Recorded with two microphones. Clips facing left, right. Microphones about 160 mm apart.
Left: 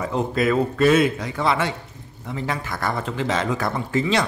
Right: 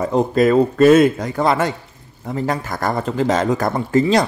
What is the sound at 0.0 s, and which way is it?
Speech, 40° right (ahead or behind).